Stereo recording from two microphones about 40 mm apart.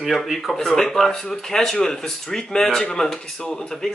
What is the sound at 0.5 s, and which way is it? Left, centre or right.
Speech, centre.